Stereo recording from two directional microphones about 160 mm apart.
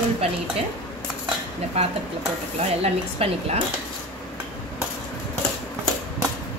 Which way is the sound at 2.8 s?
40° right (ahead or behind).